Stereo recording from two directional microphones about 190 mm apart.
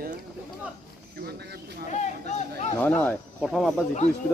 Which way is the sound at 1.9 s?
40° left (ahead or behind).